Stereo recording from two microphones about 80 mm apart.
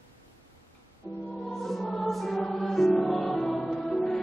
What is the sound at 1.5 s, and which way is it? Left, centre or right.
Music, centre.